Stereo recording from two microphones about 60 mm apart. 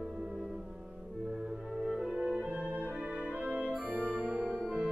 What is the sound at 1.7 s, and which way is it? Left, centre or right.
Music, centre.